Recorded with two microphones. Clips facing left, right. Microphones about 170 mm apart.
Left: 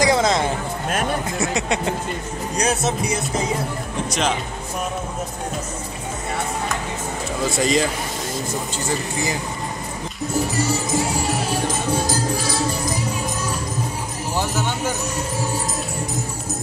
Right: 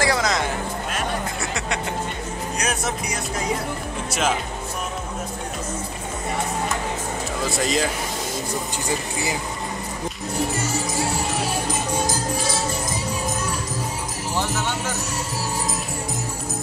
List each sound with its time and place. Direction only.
0.0 s a sound: 25° left (ahead or behind)
1.4 s music: 20° left (ahead or behind)
4.1 s speech: 5° right (ahead or behind)
7.4 s speech: centre (ahead or behind)